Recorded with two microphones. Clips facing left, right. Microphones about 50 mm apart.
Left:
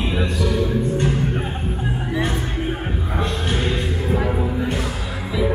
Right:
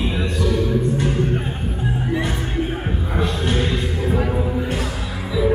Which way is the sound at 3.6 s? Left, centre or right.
Centre.